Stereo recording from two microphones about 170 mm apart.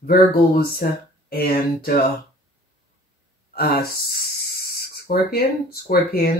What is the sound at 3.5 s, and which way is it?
Speech, 65° left (ahead or behind).